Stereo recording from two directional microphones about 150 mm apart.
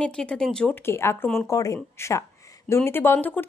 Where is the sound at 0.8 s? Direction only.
15° left (ahead or behind).